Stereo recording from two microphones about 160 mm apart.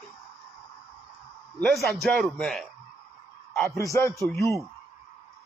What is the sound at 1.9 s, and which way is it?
Speech, centre (ahead or behind).